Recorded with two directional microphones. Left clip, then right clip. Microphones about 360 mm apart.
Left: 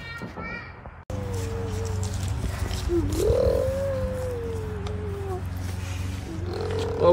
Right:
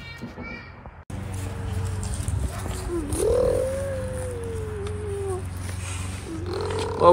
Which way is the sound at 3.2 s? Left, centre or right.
Centre.